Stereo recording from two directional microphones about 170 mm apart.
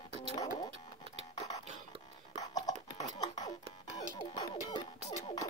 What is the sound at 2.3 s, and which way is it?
Music, 20° left (ahead or behind).